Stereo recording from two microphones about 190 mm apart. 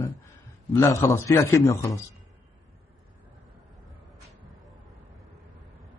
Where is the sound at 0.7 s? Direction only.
15° left (ahead or behind).